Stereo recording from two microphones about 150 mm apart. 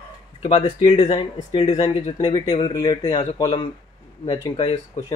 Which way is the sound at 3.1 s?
40° left (ahead or behind).